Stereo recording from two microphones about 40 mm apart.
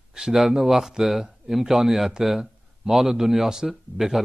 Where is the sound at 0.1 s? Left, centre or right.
Centre.